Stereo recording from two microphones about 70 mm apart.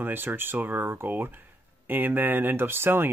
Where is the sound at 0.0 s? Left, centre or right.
Right.